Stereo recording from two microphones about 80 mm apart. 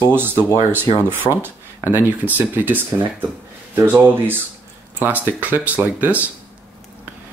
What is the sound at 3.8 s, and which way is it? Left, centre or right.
Speech, right.